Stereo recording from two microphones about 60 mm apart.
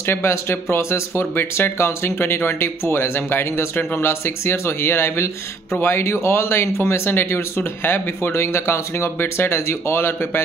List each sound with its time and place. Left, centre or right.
0.0 s speech: left
1.3 s speech: left